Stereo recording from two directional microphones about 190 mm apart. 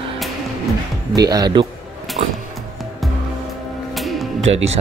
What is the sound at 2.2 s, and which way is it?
Speech, 35° right (ahead or behind).